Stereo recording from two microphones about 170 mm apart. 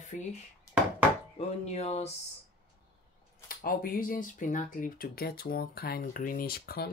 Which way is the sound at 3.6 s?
55° left (ahead or behind).